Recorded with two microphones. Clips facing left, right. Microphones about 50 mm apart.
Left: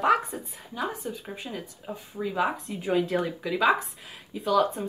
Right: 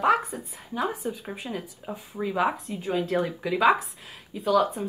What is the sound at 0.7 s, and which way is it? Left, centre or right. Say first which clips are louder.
Speech: right 3 dB; centre.